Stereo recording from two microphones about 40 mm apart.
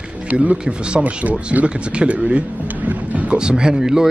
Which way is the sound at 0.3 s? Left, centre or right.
Right.